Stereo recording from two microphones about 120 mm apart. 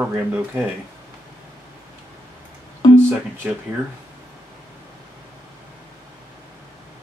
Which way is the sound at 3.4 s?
10° right (ahead or behind).